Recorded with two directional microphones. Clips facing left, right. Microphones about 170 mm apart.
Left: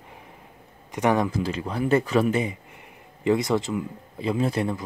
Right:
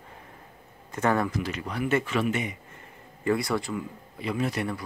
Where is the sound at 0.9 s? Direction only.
15° left (ahead or behind).